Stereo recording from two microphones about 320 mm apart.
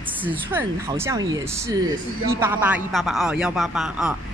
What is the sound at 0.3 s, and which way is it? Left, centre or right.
A woman's voice, centre.